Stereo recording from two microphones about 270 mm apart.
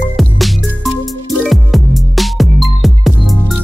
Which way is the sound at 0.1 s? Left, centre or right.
Centre.